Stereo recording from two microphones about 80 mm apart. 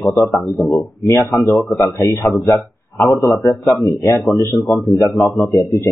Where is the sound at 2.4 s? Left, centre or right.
Left.